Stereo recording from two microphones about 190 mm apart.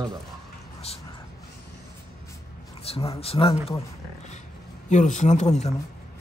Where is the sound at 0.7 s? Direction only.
30° left (ahead or behind).